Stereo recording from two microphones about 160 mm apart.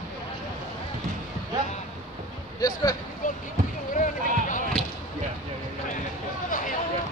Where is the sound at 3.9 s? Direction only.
55° left (ahead or behind).